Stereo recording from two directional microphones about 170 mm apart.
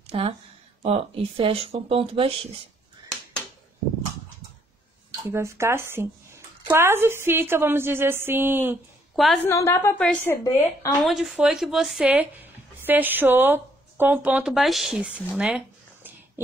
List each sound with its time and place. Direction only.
0.0 s a sound: 35° right (ahead or behind)
0.8 s speech: 35° right (ahead or behind)
5.3 s a woman's voice: 15° right (ahead or behind)
9.1 s a woman's voice: centre (ahead or behind)
9.4 s speech: 15° left (ahead or behind)
11.1 s a woman's voice: centre (ahead or behind)
15.3 s a sound: 10° right (ahead or behind)